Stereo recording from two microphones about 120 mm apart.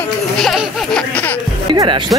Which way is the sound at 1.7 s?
40° right (ahead or behind).